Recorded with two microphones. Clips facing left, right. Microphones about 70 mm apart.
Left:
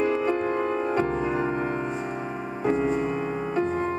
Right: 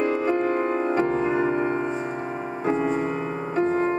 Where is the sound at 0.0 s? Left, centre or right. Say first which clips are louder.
Right 1 dB; right.